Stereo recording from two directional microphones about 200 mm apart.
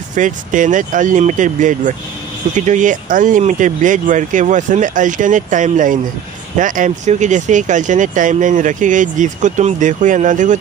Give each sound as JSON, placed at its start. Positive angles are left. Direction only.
{"t": 0.1, "sound": "speech", "side_deg": -40}